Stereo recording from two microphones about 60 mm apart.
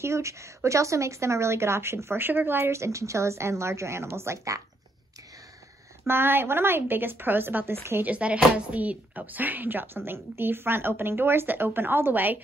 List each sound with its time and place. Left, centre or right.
0.0 s speech: right
6.0 s a woman's voice: right
8.1 s a woman's voice: right